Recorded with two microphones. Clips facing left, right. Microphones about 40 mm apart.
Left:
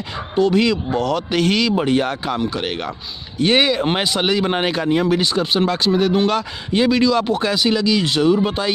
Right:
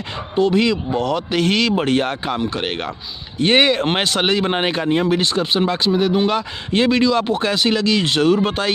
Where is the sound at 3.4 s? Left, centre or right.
Right.